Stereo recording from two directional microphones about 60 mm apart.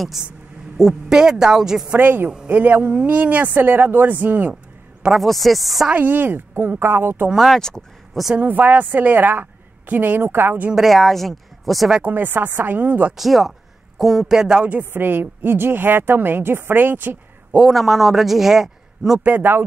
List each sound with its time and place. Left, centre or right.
0.2 s a man's voice: centre
1.1 s a man's voice: centre
1.9 s a woman's voice: right
2.9 s a woman's voice: right
5.1 s a man's voice: centre
5.9 s a woman's voice: right
7.3 s speech: centre
8.4 s a woman's voice: right
10.7 s a man's voice: centre
12.0 s a woman's voice: right
13.1 s a man's voice: centre
14.8 s a woman's voice: right
17.6 s a man's voice: centre
19.2 s a woman's voice: right